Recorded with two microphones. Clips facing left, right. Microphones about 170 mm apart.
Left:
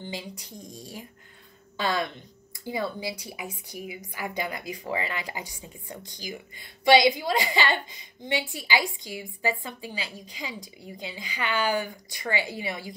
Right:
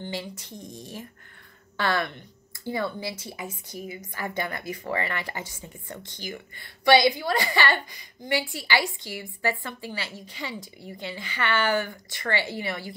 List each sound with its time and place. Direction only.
0.1 s a woman's voice: 15° left (ahead or behind)
1.8 s a woman's voice: 15° left (ahead or behind)